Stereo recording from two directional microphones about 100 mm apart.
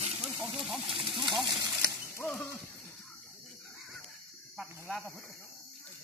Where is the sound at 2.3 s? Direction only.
25° left (ahead or behind).